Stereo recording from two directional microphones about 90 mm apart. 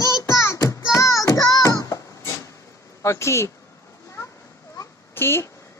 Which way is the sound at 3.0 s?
30° left (ahead or behind).